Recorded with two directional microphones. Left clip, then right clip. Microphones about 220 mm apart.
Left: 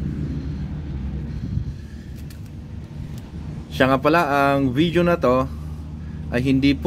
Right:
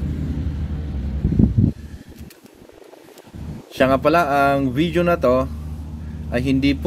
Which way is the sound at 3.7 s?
10° left (ahead or behind).